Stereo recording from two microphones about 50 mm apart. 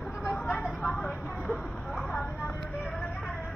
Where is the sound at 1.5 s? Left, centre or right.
Centre.